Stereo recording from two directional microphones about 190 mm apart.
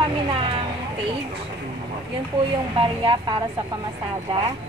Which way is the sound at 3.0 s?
25° right (ahead or behind).